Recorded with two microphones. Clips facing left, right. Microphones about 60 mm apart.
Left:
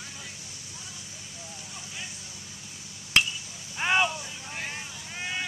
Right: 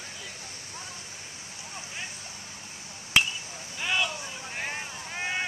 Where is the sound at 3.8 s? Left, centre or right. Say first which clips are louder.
Left 4 dB; left.